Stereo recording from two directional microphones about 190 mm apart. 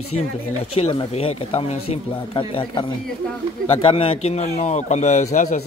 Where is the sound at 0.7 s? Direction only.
30° left (ahead or behind).